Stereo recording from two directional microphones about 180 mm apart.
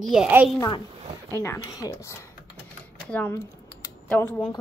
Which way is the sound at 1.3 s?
15° left (ahead or behind).